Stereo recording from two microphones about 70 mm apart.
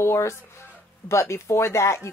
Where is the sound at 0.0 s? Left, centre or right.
Left.